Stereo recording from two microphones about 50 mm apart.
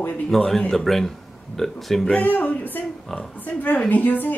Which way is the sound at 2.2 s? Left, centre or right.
Left.